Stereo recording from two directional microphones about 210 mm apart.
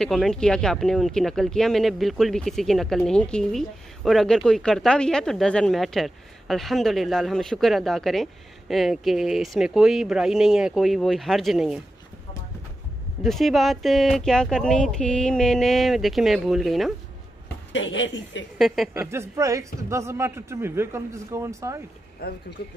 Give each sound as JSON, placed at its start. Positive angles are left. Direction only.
{"t": 0.0, "sound": "speech", "side_deg": 0}
{"t": 13.2, "sound": "speech", "side_deg": 0}
{"t": 17.7, "sound": "speech", "side_deg": 60}
{"t": 18.9, "sound": "a man's voice", "side_deg": -10}
{"t": 22.2, "sound": "speech", "side_deg": 50}